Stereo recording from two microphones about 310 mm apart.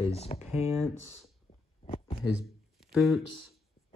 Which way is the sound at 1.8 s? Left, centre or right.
Left.